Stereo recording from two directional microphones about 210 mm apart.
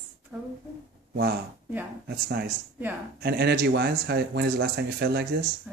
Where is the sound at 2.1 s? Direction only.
50° right (ahead or behind).